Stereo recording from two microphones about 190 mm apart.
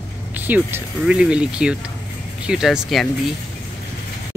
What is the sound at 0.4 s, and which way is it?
Speech, 10° right (ahead or behind).